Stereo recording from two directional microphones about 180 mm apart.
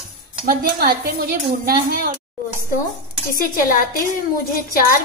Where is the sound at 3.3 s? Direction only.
50° left (ahead or behind).